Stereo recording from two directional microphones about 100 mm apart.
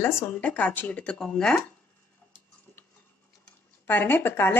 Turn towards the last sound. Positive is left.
turn(degrees=25)  # may be behind; listen again after turning